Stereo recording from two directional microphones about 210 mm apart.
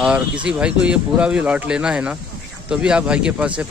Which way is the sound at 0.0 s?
5° right (ahead or behind).